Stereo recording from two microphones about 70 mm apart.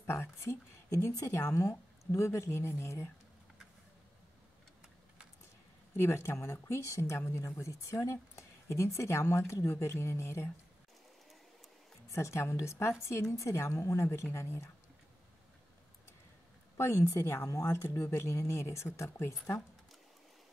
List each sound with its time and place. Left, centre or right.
0.0 s speech: left
0.8 s speech: left
5.9 s speech: left
12.1 s speech: left
16.7 s speech: left
17.8 s speech: left